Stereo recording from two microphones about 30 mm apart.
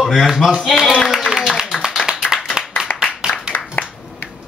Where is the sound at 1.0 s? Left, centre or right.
Centre.